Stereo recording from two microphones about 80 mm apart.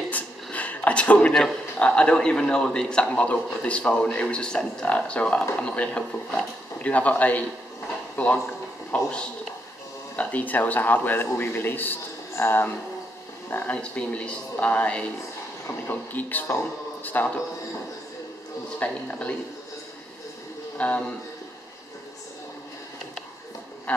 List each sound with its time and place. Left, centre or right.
0.1 s a sound: centre
1.3 s a man's voice: centre
8.9 s a man's voice: centre
10.1 s a man's voice: centre
18.8 s a man's voice: centre
20.7 s a man's voice: centre